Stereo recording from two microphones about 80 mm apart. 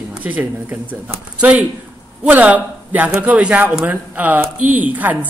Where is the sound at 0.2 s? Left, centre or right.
Right.